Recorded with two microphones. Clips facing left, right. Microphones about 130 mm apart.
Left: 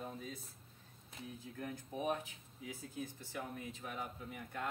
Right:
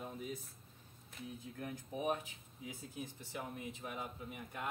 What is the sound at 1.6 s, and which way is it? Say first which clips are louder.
Speech: right 1 dB; 15° right (ahead or behind).